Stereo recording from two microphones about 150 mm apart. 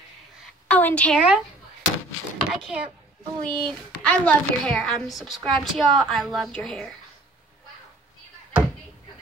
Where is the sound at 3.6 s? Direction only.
10° left (ahead or behind).